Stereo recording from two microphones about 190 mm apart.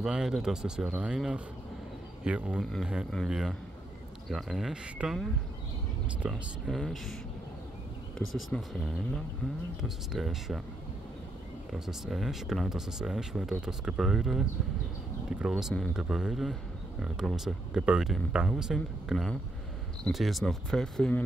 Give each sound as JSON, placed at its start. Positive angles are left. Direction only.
{"t": 0.0, "sound": "speech", "side_deg": -5}
{"t": 8.3, "sound": "speech", "side_deg": 0}
{"t": 11.7, "sound": "speech", "side_deg": 0}